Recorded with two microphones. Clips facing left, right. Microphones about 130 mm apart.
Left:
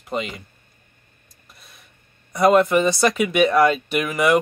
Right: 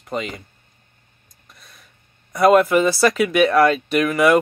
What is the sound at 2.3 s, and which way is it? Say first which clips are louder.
Speech: right 2 dB; centre (ahead or behind).